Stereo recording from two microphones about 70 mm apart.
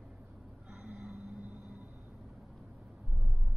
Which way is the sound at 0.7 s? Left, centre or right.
Centre.